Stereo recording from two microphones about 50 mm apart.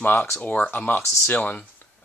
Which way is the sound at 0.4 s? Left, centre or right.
Left.